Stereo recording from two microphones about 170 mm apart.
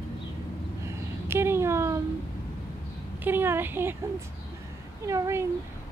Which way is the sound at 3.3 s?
10° right (ahead or behind).